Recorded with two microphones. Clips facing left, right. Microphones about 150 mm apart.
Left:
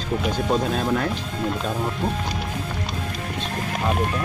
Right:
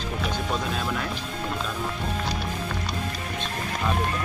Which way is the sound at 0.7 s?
45° left (ahead or behind).